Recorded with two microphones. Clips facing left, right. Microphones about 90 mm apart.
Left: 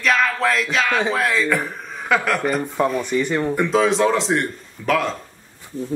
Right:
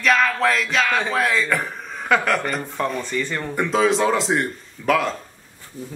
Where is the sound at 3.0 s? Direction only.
15° left (ahead or behind).